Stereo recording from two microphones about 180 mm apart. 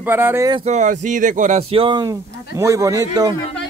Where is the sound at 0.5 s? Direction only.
40° right (ahead or behind); by 3.3 s 20° right (ahead or behind).